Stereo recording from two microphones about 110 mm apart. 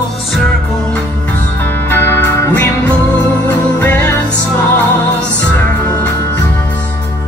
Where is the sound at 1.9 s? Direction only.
20° left (ahead or behind).